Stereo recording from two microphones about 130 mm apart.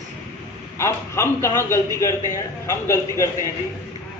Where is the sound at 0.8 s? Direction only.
20° left (ahead or behind).